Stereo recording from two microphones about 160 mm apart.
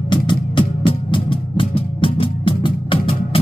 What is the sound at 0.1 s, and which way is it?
Music, 30° left (ahead or behind).